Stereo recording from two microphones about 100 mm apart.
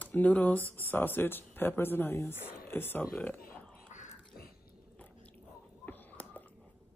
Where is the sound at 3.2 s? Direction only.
20° left (ahead or behind).